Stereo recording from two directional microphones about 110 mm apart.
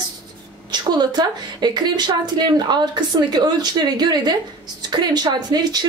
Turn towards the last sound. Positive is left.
turn(degrees=-40)  # may be behind; listen again after turning